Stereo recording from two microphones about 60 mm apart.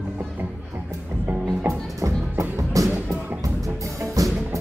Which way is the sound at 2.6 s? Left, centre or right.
Right.